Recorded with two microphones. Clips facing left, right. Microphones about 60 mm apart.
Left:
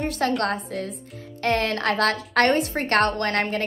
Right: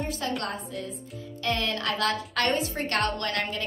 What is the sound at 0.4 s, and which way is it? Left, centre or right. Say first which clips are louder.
A woman's voice: left 7 dB; left.